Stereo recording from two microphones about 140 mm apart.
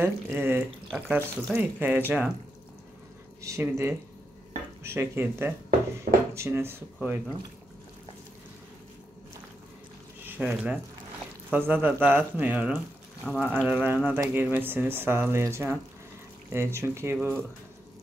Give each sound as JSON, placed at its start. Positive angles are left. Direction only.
{"t": 0.0, "sound": "speech", "side_deg": -15}
{"t": 3.4, "sound": "speech", "side_deg": -20}
{"t": 10.2, "sound": "speech", "side_deg": -10}